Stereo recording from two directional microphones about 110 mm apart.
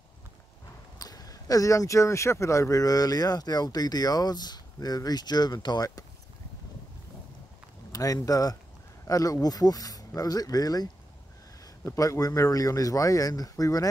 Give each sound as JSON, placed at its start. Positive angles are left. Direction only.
{"t": 0.9, "sound": "speech", "side_deg": 35}
{"t": 7.9, "sound": "speech", "side_deg": 30}